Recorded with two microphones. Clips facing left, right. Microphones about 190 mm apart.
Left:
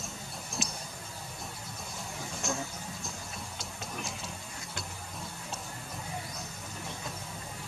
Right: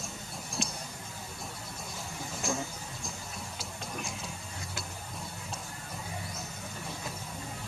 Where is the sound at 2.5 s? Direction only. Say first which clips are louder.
Right 2 dB; centre (ahead or behind).